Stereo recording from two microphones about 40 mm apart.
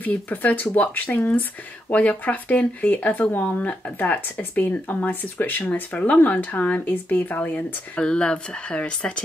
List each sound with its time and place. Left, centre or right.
0.3 s speech: left
8.0 s speech: left